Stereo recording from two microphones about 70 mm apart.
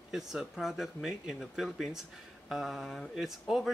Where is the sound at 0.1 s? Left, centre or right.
Centre.